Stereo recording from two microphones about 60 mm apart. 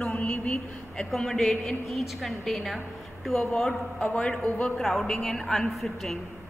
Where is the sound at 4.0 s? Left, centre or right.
Centre.